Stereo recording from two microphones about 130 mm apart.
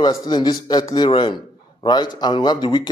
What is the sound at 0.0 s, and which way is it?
A man's voice, 30° left (ahead or behind).